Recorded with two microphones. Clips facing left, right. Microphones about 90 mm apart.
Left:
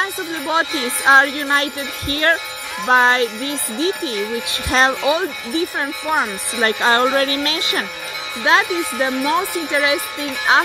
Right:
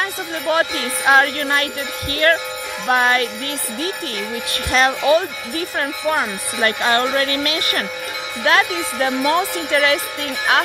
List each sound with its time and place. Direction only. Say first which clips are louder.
0.0 s music: even; 20° left (ahead or behind)
4.6 s speech: even; 35° left (ahead or behind)
5.0 s music: right 2 dB; 20° left (ahead or behind)
5.8 s speech: even; 10° left (ahead or behind)
6.6 s music: left 2 dB; 25° left (ahead or behind)
8.5 s speech: left 1 dB; 20° left (ahead or behind)
10.5 s music: left 2 dB; 20° left (ahead or behind)